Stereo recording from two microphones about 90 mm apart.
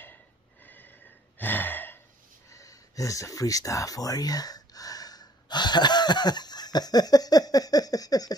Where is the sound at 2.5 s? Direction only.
40° left (ahead or behind).